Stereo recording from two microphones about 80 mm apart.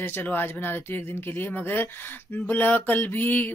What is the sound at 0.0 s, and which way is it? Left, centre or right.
Speech, left.